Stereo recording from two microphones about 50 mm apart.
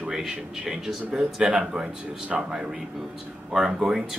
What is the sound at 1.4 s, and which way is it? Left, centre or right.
Speech, centre.